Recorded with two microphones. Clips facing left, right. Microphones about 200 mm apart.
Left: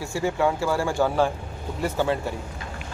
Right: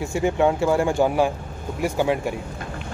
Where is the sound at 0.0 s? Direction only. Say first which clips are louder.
Right 4 dB; 20° right (ahead or behind).